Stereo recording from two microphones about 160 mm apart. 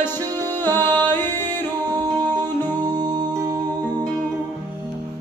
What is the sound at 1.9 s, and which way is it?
Singing, 25° right (ahead or behind).